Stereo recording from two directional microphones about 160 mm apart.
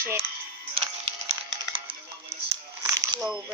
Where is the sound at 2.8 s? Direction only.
20° right (ahead or behind).